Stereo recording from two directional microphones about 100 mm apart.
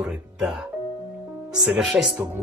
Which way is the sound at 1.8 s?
Centre (ahead or behind).